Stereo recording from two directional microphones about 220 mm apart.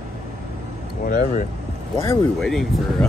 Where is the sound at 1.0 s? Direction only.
40° left (ahead or behind).